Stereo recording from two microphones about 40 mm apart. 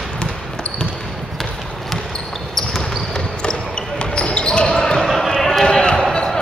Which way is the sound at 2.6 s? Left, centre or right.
Centre.